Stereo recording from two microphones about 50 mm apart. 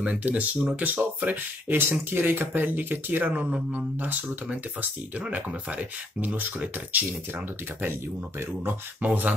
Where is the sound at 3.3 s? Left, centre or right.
Right.